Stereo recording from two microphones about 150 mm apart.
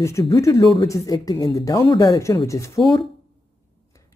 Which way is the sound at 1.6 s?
25° left (ahead or behind).